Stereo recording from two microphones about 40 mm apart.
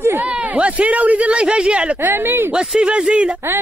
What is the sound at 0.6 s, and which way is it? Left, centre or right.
Speech, right.